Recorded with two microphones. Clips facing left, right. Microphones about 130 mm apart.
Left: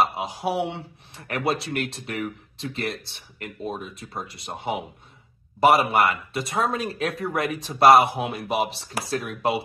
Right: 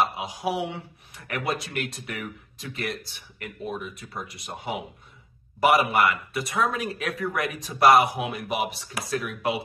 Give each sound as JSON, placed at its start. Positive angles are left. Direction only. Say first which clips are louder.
{"t": 0.2, "sound": "a man's voice", "louder": "left 2 dB", "side_deg": 30}